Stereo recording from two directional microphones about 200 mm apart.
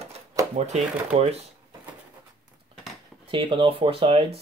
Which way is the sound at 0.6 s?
35° right (ahead or behind).